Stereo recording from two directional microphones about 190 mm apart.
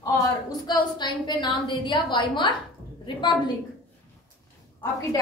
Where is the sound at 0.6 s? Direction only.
20° left (ahead or behind).